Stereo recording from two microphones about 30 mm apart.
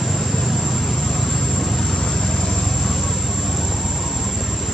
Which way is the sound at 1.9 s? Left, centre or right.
Left.